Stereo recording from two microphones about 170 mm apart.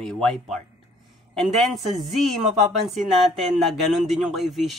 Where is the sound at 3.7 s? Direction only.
Centre (ahead or behind).